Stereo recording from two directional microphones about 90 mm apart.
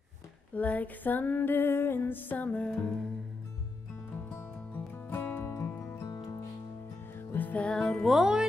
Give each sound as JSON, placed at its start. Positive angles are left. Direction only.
{"t": 0.6, "sound": "female singing", "side_deg": 15}
{"t": 4.3, "sound": "music", "side_deg": 20}
{"t": 5.9, "sound": "music", "side_deg": 40}
{"t": 7.2, "sound": "music", "side_deg": 20}